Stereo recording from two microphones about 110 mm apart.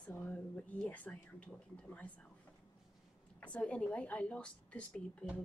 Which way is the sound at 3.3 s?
10° left (ahead or behind).